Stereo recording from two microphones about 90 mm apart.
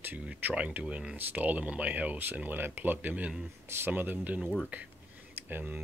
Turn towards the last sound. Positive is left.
turn(degrees=-20)  # may be behind; listen again after turning